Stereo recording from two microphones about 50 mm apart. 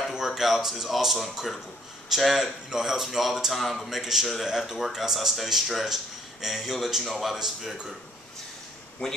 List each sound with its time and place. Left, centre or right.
0.1 s a man's voice: centre